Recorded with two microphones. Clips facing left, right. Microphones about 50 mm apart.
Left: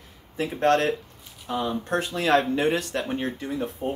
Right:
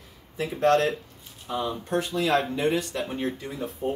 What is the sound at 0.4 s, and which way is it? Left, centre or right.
Speech, left.